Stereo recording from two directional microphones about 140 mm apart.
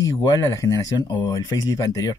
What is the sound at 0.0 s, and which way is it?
Speech, 25° left (ahead or behind).